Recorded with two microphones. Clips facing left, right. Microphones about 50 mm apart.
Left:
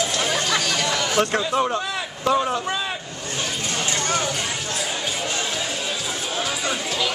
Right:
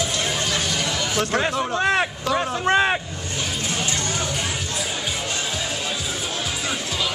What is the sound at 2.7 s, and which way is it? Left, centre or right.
Speech, right.